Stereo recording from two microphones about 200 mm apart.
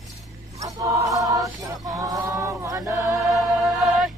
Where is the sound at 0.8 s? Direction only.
15° right (ahead or behind).